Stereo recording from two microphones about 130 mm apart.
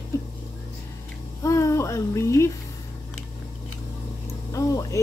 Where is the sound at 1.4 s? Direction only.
25° left (ahead or behind).